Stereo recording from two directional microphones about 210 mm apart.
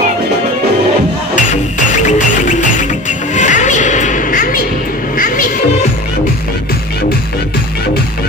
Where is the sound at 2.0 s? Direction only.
35° left (ahead or behind).